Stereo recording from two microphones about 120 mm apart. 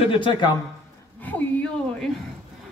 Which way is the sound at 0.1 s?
45° left (ahead or behind).